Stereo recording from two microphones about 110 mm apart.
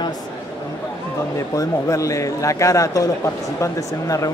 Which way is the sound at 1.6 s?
30° left (ahead or behind).